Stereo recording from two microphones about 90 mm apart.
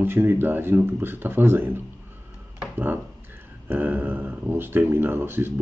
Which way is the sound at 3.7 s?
20° right (ahead or behind).